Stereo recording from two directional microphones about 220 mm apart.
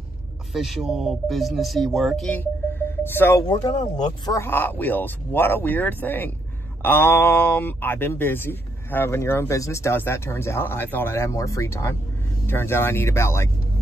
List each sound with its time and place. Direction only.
0.5 s speech: centre (ahead or behind); by 3.7 s 15° left (ahead or behind)
3.7 s speech: 30° left (ahead or behind)
4.3 s speech: 10° left (ahead or behind)